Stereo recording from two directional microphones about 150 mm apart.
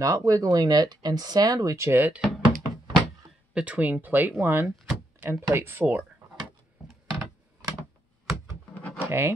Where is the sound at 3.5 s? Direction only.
10° right (ahead or behind).